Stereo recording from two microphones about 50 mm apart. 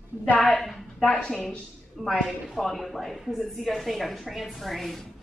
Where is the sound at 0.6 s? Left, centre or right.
Centre.